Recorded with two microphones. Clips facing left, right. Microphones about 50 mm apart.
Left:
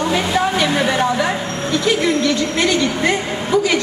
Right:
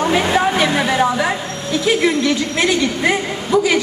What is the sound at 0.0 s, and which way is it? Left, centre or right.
Speech, centre.